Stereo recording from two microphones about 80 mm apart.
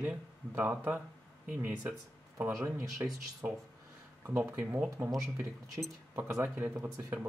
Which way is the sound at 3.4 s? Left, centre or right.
Centre.